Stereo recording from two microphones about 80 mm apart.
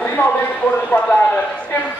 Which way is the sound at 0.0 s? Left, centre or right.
Left.